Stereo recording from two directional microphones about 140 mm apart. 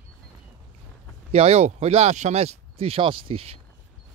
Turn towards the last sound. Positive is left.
turn(degrees=-45)  # may be behind; listen again after turning